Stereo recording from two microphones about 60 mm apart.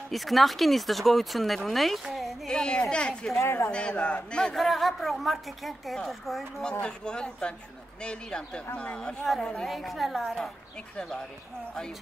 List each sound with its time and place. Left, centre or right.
0.1 s speech: centre
2.5 s speech: centre
3.3 s a woman's voice: left
3.7 s speech: centre
4.6 s speech: centre
6.7 s speech: centre
9.7 s speech: centre